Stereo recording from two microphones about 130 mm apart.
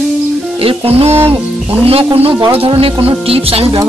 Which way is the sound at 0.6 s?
45° right (ahead or behind).